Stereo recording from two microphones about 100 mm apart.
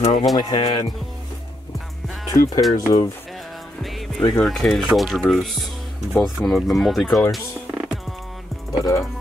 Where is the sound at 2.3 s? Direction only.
40° left (ahead or behind).